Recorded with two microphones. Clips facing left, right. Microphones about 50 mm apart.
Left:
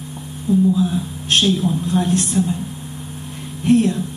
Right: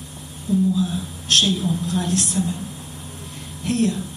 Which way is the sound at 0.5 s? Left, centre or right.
Left.